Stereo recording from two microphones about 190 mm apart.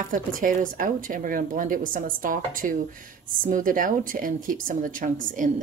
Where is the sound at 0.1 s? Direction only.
45° right (ahead or behind).